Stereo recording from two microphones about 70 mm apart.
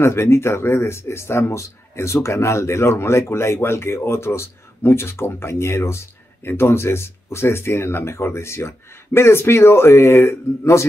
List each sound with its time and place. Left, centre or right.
0.0 s speech: left